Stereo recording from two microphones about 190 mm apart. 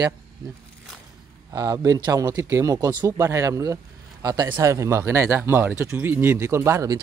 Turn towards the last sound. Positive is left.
turn(degrees=-15)  # may be behind; listen again after turning